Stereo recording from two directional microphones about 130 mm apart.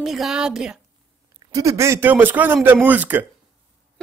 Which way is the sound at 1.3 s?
25° right (ahead or behind).